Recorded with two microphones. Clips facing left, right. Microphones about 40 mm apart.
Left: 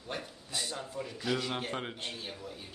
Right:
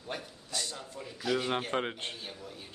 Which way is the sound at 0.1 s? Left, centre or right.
Centre.